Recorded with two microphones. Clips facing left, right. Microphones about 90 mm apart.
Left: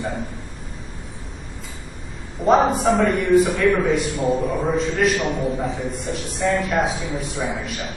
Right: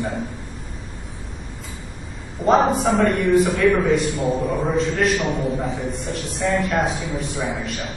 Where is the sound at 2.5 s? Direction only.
Centre (ahead or behind).